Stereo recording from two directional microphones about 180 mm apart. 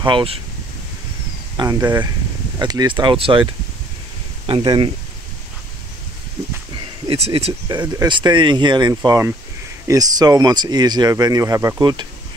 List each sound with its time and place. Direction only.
0.0 s speech: 30° right (ahead or behind)
1.6 s speech: 20° right (ahead or behind)
4.5 s speech: 30° right (ahead or behind)
7.1 s speech: 35° right (ahead or behind)
7.6 s speech: 20° right (ahead or behind)